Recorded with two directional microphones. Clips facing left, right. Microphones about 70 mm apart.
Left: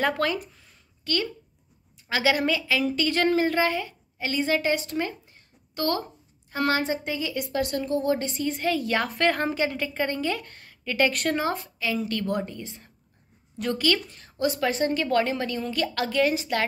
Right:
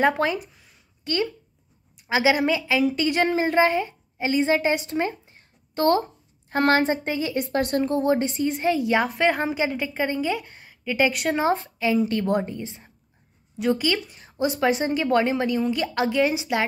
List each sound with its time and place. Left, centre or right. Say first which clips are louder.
0.0 s a woman's voice: right 4 dB; right
0.4 s a sound: right 1 dB; centre
1.1 s a woman's voice: right 3 dB; right
6.5 s a woman's voice: right 5 dB; right
8.2 s a woman's voice: right 4 dB; right
11.4 s a woman's voice: right 6 dB; right
13.6 s a woman's voice: right 2 dB; centre